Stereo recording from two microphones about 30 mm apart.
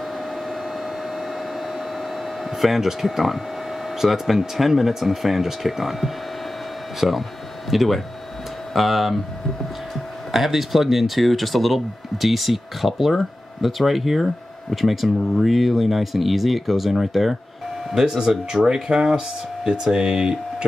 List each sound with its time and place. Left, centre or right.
2.5 s speech: centre
10.3 s speech: centre
18.2 s speech: right